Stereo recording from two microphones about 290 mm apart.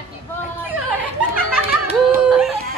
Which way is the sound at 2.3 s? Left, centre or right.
Centre.